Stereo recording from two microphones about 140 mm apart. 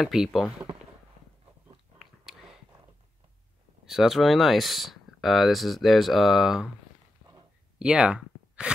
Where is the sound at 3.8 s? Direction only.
Centre (ahead or behind).